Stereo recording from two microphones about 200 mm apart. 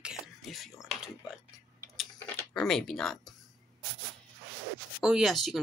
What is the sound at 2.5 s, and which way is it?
Speech, 5° left (ahead or behind).